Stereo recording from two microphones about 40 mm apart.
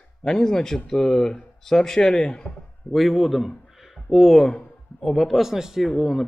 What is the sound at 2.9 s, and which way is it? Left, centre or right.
Speech, centre.